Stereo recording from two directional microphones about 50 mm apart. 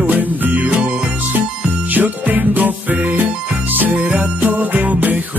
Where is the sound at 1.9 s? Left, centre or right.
Right.